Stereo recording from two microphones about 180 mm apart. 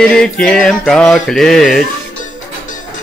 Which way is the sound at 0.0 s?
5° left (ahead or behind).